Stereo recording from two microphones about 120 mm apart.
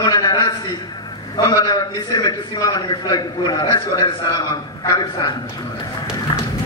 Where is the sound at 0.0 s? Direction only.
35° left (ahead or behind).